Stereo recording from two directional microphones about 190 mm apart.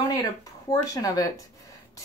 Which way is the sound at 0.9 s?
20° left (ahead or behind).